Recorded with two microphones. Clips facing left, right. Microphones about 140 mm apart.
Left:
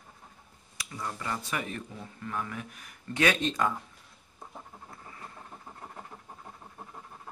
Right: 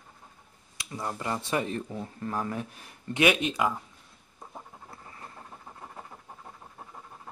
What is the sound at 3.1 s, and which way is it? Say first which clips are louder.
Speech: right 2 dB; 15° right (ahead or behind).